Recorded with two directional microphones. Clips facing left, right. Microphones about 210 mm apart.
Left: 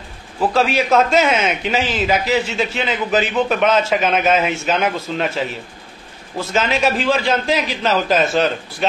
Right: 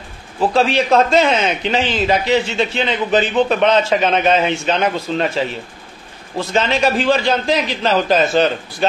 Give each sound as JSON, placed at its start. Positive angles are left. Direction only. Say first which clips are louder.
{"t": 0.5, "sound": "a man's voice", "louder": "right 2 dB", "side_deg": 5}
{"t": 1.1, "sound": "a man's voice", "louder": "right 1 dB", "side_deg": -30}
{"t": 1.7, "sound": "a man's voice", "louder": "right 2 dB", "side_deg": 5}